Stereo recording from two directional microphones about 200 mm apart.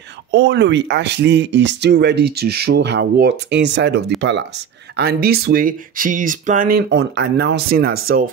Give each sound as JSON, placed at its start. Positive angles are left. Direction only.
{"t": 0.3, "sound": "speech", "side_deg": -60}